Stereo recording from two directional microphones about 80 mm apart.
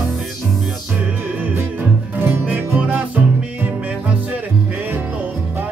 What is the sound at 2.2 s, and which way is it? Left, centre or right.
Music, right.